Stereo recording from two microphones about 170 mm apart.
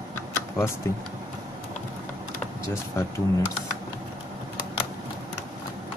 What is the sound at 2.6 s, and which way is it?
Speech, 15° left (ahead or behind).